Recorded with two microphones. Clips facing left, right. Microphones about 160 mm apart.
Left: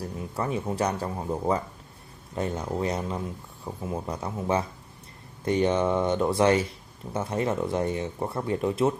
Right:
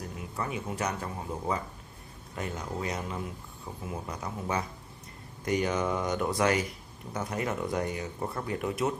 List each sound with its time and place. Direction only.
0.4 s speech: 35° left (ahead or behind)